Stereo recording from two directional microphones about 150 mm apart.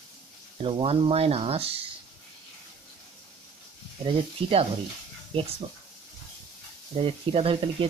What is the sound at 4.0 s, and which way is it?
Speech, 40° right (ahead or behind).